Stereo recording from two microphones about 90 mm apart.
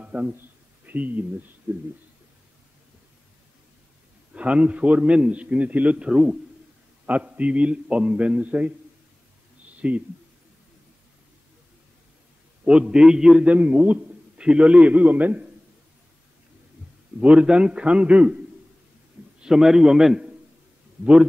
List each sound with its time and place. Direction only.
0.0 s a sound: 15° right (ahead or behind)
0.8 s speech: 20° right (ahead or behind)
4.3 s a man's voice: 10° right (ahead or behind)
9.8 s speech: 15° right (ahead or behind)
12.6 s a man's voice: 10° right (ahead or behind)
17.2 s a man's voice: 10° right (ahead or behind)
19.4 s a man's voice: 5° right (ahead or behind)